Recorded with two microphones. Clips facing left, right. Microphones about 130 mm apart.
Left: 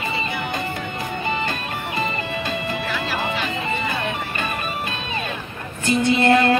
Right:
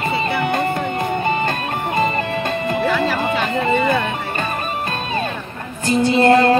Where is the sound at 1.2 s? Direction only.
45° right (ahead or behind).